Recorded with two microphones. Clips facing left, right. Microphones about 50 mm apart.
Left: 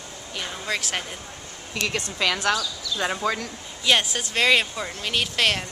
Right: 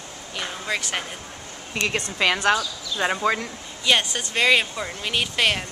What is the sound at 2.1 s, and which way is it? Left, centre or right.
Speech, right.